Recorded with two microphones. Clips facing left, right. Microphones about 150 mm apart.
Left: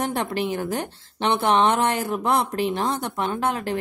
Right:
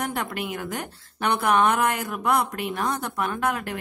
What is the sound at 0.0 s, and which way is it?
A woman's voice, 30° left (ahead or behind).